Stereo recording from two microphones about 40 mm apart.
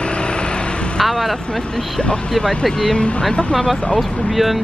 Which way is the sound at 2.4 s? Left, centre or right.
Left.